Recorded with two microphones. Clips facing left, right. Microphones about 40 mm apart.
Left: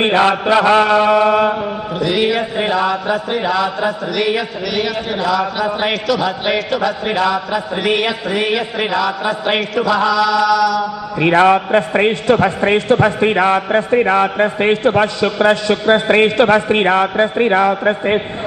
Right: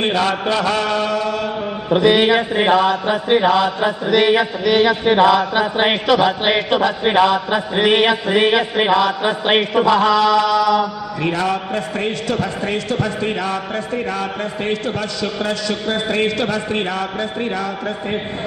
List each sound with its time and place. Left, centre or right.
0.0 s a man's voice: left
1.9 s speech: right
2.9 s chant: right
3.8 s speech: right
5.6 s chant: right
11.1 s a man's voice: left